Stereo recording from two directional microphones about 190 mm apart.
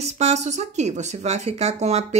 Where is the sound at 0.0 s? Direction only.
35° right (ahead or behind).